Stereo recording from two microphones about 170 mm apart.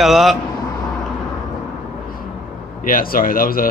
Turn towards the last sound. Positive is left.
turn(degrees=55)  # may be behind; listen again after turning